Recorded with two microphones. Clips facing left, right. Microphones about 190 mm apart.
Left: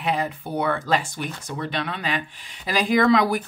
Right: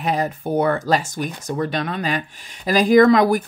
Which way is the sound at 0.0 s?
40° right (ahead or behind).